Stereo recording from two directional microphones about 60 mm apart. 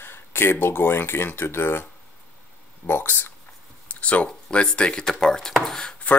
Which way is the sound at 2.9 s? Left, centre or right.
Left.